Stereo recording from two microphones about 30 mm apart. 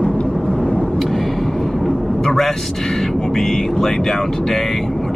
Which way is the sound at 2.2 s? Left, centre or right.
Centre.